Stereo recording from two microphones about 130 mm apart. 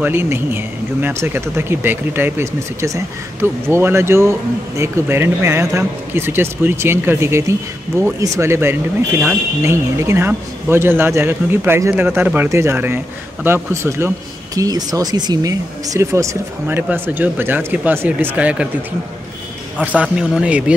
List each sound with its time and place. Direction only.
0.0 s speech: 15° right (ahead or behind)
9.7 s speech: 20° right (ahead or behind)
19.8 s speech: 10° right (ahead or behind)